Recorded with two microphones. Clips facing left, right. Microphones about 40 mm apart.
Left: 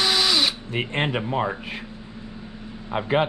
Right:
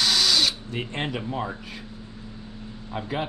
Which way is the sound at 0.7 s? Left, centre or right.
Left.